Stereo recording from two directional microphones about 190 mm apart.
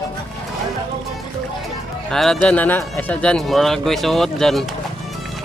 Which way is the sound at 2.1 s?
5° left (ahead or behind).